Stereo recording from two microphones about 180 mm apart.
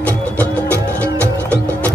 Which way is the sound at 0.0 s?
10° left (ahead or behind).